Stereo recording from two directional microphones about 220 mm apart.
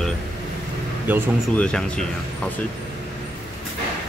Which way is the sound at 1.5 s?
5° left (ahead or behind).